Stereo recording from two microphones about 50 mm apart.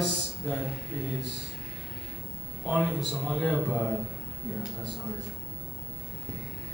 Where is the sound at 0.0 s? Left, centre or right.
Centre.